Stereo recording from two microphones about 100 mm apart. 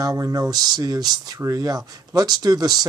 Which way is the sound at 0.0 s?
35° right (ahead or behind).